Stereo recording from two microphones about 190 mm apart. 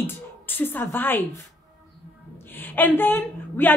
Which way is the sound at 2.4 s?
10° left (ahead or behind).